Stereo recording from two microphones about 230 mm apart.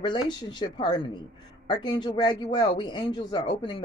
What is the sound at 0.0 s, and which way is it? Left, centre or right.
A man's voice, centre.